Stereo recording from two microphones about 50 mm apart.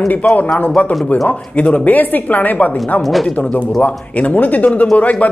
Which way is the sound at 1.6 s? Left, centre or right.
Left.